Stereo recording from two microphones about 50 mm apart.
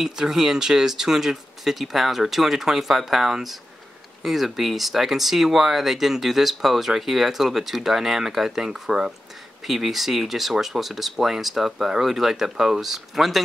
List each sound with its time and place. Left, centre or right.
0.0 s speech: centre